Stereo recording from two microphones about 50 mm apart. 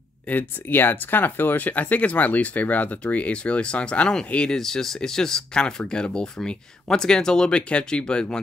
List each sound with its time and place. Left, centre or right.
0.3 s speech: left; by 4.6 s centre
4.6 s speech: centre